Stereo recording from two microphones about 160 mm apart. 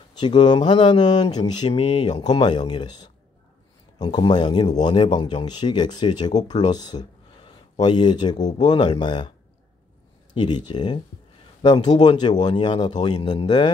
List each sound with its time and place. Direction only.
0.2 s speech: 30° left (ahead or behind)
10.3 s speech: 30° left (ahead or behind)